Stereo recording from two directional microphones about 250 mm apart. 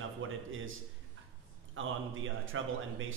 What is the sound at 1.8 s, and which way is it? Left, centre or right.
Speech, right.